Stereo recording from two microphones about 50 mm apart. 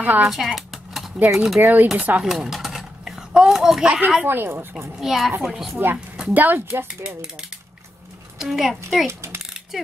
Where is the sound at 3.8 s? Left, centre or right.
Right.